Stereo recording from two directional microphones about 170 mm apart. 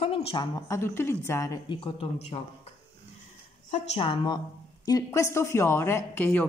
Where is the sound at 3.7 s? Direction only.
35° left (ahead or behind).